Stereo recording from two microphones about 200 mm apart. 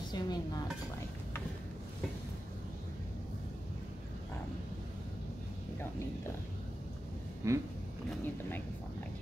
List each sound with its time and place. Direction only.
0.1 s dishes: 20° left (ahead or behind)
7.4 s speech: 15° right (ahead or behind)